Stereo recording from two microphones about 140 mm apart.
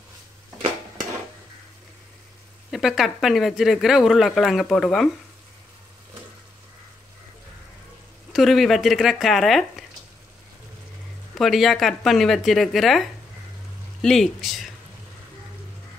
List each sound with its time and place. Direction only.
2.7 s speech: centre (ahead or behind)
8.3 s speech: centre (ahead or behind)
11.3 s speech: centre (ahead or behind)